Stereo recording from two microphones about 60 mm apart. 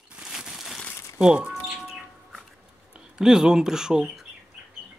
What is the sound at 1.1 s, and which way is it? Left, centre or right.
Speech, centre.